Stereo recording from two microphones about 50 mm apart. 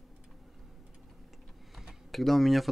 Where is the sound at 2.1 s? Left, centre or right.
Centre.